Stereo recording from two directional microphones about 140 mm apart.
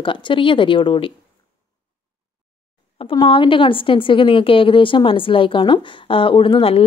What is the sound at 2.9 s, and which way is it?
A woman's voice, 40° left (ahead or behind).